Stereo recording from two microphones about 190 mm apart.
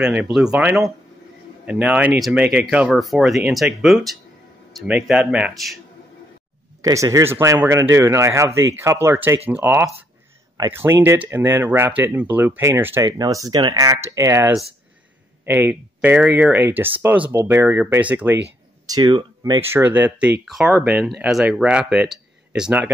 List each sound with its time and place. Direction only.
0.0 s speech: 5° right (ahead or behind)
6.8 s speech: 15° right (ahead or behind)
18.9 s speech: 20° right (ahead or behind)
19.8 s speech: 10° right (ahead or behind)